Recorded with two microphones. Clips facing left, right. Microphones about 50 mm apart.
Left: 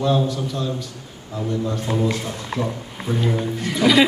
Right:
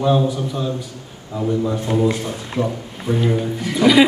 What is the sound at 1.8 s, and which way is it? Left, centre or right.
A man's voice, centre.